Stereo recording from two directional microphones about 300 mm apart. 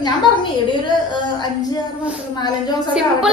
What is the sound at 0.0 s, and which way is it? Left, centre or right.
Speech, centre.